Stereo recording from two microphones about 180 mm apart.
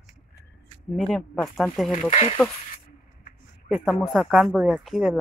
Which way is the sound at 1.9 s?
40° left (ahead or behind).